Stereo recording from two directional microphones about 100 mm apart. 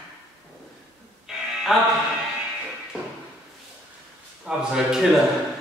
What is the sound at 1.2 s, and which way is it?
Music, centre (ahead or behind).